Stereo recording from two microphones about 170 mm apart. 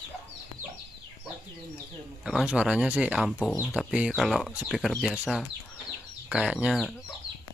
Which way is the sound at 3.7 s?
5° right (ahead or behind).